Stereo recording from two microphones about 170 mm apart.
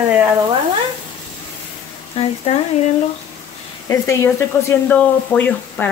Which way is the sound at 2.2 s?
35° left (ahead or behind).